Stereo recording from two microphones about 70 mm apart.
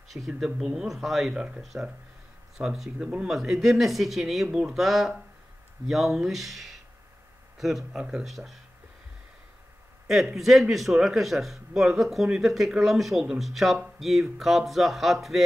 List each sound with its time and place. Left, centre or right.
0.3 s speech: centre
10.0 s speech: centre